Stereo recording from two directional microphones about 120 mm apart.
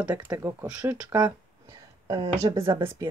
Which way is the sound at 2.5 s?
50° right (ahead or behind).